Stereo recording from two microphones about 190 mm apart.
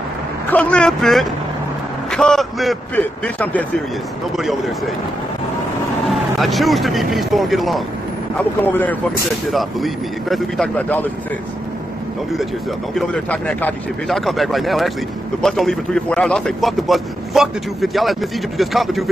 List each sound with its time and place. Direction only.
0.5 s a man's voice: 5° left (ahead or behind)
6.0 s a man's voice: centre (ahead or behind)
12.9 s a man's voice: 5° left (ahead or behind)